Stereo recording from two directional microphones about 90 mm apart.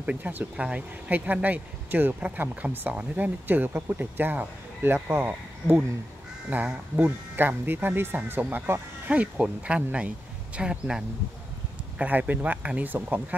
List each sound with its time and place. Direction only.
0.0 s speech: 15° right (ahead or behind)